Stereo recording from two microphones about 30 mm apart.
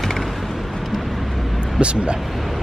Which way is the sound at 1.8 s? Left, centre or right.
Right.